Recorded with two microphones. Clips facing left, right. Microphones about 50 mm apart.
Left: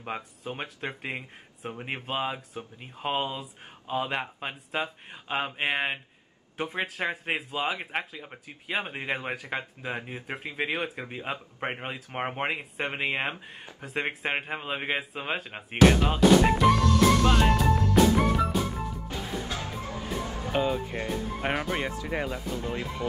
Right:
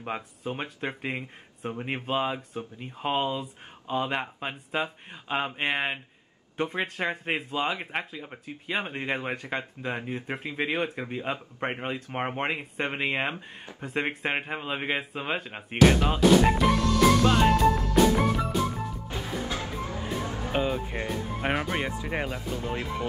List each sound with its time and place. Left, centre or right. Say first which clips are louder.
0.0 s speech: right 2 dB; centre
19.0 s music: right 1 dB; right
20.5 s speech: left 1 dB; centre
20.9 s speech: even; right
21.6 s speech: even; centre
22.0 s speech: even; centre